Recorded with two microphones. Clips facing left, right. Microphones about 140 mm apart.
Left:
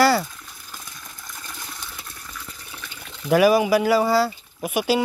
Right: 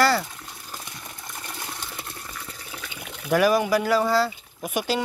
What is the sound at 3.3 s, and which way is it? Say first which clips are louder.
Speech: left 4 dB; 10° left (ahead or behind).